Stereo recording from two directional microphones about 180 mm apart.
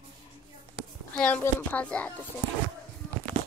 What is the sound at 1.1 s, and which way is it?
Speech, 10° left (ahead or behind).